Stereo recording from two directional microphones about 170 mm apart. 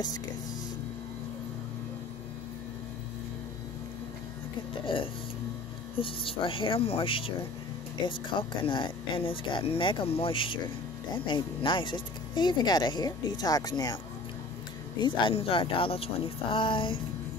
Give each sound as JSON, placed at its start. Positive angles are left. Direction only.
{"t": 4.8, "sound": "speech", "side_deg": 30}
{"t": 15.0, "sound": "speech", "side_deg": 25}